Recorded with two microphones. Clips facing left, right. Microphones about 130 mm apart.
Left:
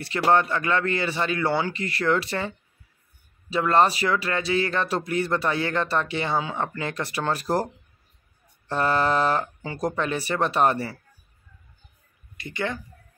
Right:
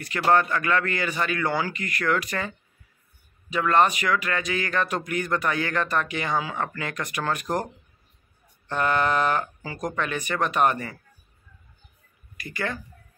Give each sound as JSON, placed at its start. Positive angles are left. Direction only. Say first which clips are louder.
{"t": 0.0, "sound": "speech", "louder": "left 1 dB", "side_deg": 30}
{"t": 12.4, "sound": "speech", "louder": "left 2 dB", "side_deg": 25}